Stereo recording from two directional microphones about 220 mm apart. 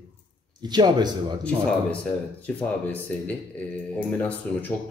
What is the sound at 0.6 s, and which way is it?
Speech, 20° right (ahead or behind).